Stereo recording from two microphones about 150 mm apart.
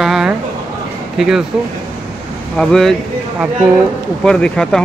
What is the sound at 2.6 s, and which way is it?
Speech, 5° left (ahead or behind).